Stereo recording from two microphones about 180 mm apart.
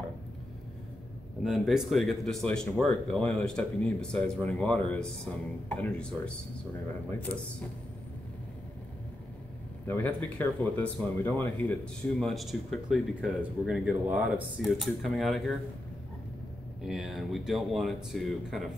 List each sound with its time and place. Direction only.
1.4 s speech: 5° right (ahead or behind)
9.8 s speech: 10° left (ahead or behind)
16.8 s speech: centre (ahead or behind)